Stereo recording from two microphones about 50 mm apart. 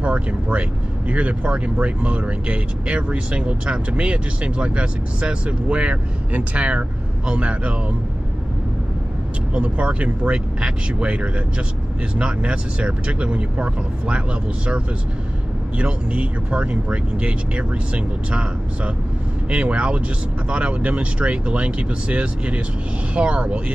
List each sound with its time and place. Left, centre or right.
0.0 s speech: right
9.5 s speech: right
15.8 s speech: right
19.5 s speech: right